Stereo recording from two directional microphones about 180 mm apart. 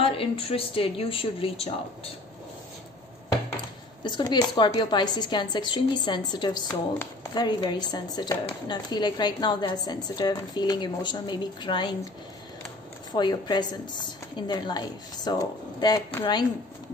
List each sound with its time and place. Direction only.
0.0 s speech: 30° left (ahead or behind)
4.1 s speech: 25° left (ahead or behind)
13.1 s speech: 25° left (ahead or behind)